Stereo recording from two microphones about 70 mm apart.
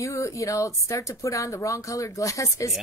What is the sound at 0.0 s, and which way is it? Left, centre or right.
A woman's voice, left.